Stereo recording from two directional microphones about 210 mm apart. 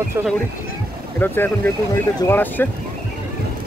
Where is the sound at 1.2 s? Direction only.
10° left (ahead or behind).